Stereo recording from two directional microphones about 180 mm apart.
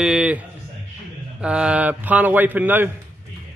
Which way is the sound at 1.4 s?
5° right (ahead or behind).